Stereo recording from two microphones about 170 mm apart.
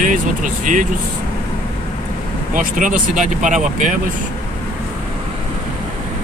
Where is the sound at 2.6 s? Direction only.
50° right (ahead or behind).